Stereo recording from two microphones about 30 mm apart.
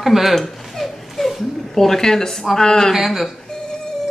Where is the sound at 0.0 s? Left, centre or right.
Centre.